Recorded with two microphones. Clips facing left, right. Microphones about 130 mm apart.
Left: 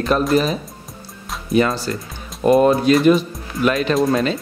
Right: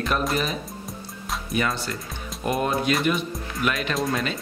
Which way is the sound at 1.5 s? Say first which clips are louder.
Left 9 dB; 30° left (ahead or behind).